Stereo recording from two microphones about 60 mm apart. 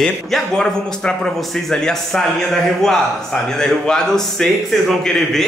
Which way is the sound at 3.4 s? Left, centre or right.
Centre.